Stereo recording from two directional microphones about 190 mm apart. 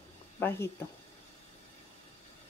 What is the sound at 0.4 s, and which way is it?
Speech, 10° left (ahead or behind).